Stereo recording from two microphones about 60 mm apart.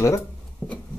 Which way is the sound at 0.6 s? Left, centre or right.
Left.